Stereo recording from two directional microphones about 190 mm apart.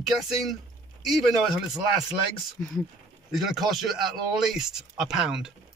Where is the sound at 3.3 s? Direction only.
Centre (ahead or behind).